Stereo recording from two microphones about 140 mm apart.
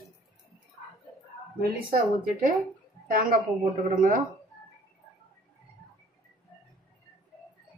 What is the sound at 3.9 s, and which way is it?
Speech, 70° right (ahead or behind).